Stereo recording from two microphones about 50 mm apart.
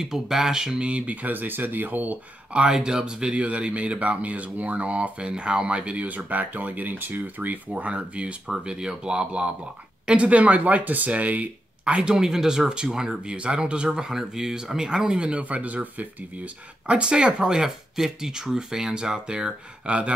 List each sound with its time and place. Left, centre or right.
0.0 s speech: centre; by 2.1 s right
2.5 s speech: centre; by 7.5 s right
7.7 s speech: right
16.8 s speech: right